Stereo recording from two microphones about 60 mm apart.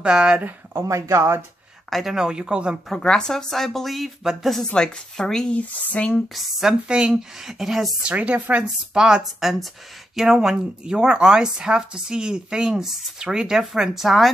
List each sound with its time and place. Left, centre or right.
0.0 s speech: centre
0.8 s speech: right
1.9 s speech: centre
2.1 s speech: centre
2.9 s speech: centre
4.2 s speech: centre
4.6 s speech: centre
5.5 s speech: left
6.2 s speech: centre
6.9 s speech: centre
8.0 s speech: right
8.9 s speech: centre